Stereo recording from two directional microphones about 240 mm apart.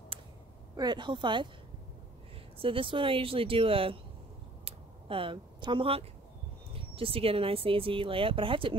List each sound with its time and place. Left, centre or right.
0.7 s speech: centre
2.6 s speech: right
4.6 s a sound: right
6.7 s speech: right